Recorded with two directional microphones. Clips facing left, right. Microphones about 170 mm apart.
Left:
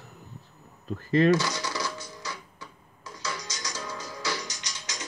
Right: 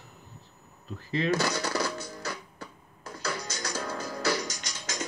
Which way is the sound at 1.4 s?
55° right (ahead or behind).